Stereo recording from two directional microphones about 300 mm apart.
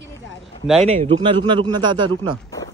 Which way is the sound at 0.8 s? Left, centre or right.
Right.